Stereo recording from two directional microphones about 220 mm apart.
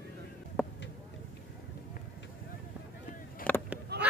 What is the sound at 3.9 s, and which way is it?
Goose, 45° right (ahead or behind).